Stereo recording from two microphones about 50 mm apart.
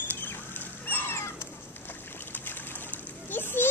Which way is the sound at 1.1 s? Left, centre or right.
Left.